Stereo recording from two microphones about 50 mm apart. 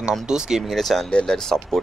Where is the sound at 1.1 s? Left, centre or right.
Centre.